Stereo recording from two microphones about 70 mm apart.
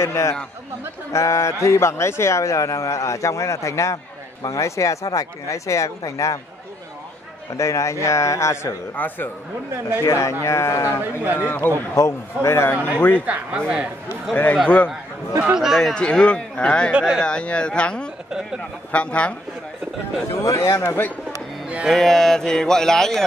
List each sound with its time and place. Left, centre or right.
0.0 s a man's voice: left
7.5 s a man's voice: left
8.9 s speech: left
10.0 s a man's voice: left
11.3 s a man's voice: left
12.7 s speech: right
14.3 s speech: left
15.4 s a man's voice: centre
15.9 s speech: centre
20.4 s a man's voice: left
21.8 s speech: centre